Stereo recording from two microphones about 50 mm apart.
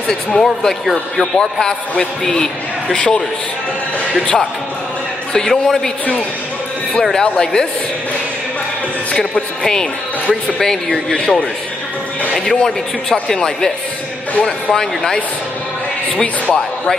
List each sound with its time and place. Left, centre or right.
0.1 s a man's voice: centre
5.3 s a man's voice: centre
7.0 s a man's voice: centre
9.2 s a woman's voice: centre
11.1 s a man's voice: centre
12.4 s a man's voice: centre